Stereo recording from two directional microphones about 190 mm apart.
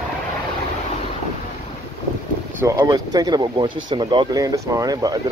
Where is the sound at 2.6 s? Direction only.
15° right (ahead or behind).